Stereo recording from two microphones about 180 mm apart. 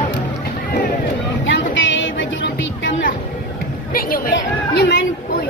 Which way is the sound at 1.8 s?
90° left.